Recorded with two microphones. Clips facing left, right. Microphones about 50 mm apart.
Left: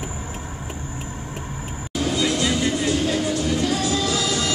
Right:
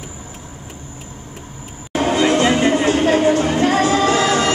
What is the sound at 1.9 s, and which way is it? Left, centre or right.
Music, right.